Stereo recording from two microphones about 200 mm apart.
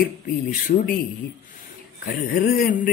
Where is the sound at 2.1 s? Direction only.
45° left (ahead or behind).